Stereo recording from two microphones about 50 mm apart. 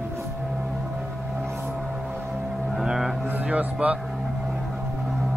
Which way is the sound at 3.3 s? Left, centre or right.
Right.